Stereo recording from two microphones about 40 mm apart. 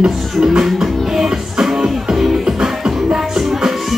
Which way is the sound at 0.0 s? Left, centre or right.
Centre.